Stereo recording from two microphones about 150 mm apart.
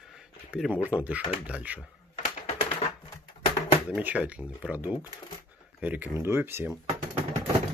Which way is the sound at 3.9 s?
10° right (ahead or behind).